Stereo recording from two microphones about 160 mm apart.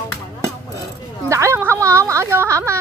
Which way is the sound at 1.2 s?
20° right (ahead or behind).